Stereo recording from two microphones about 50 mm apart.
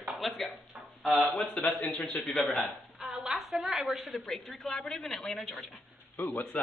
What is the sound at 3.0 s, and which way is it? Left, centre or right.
A woman's voice, centre.